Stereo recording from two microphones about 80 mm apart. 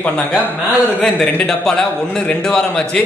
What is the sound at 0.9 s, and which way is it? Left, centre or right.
A man's voice, centre.